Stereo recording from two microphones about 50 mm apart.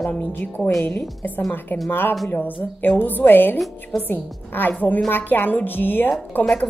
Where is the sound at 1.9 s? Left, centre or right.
Left.